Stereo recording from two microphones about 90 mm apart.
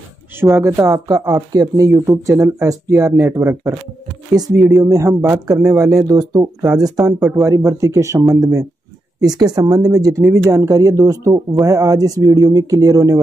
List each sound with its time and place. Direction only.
0.4 s speech: 30° right (ahead or behind)
4.8 s speech: 35° right (ahead or behind)
7.2 s speech: 5° right (ahead or behind)
7.4 s speech: 35° right (ahead or behind)